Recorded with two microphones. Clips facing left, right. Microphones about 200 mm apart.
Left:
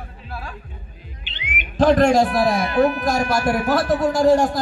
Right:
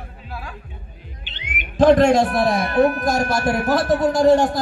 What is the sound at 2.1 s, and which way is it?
Speech, centre (ahead or behind).